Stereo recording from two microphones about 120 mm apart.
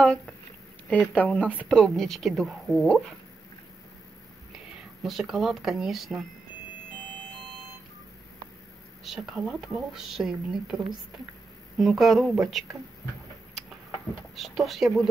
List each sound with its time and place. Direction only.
0.8 s speech: 10° left (ahead or behind)
5.0 s speech: centre (ahead or behind)
9.0 s speech: centre (ahead or behind)
14.3 s speech: centre (ahead or behind)